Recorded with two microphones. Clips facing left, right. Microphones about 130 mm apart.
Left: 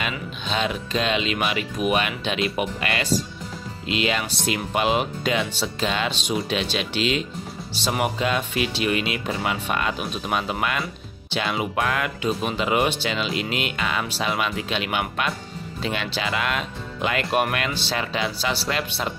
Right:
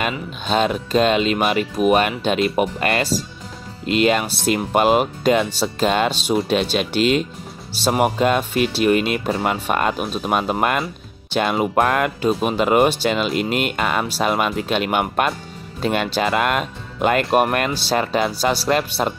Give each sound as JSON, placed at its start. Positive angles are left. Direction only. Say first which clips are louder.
{"t": 0.5, "sound": "speech", "louder": "right 7 dB", "side_deg": -45}